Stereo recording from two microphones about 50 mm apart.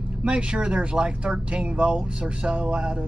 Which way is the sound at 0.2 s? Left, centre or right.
Right.